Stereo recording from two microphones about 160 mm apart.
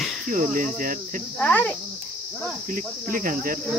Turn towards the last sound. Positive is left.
turn(degrees=-60)  # may be behind; listen again after turning